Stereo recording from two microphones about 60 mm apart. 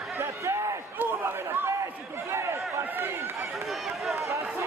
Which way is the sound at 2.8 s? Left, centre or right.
Right.